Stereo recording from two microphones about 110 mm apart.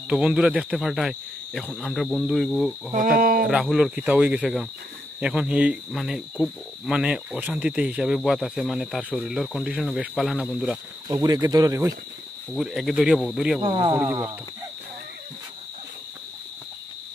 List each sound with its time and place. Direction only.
0.1 s speech: 10° right (ahead or behind)
11.1 s speech: 35° right (ahead or behind)
12.5 s speech: centre (ahead or behind)
13.6 s speech: 40° right (ahead or behind)